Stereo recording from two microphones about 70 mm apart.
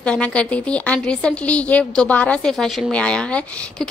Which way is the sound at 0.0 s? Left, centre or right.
Centre.